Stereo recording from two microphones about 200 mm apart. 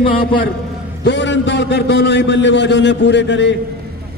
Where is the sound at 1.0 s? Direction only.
65° left (ahead or behind).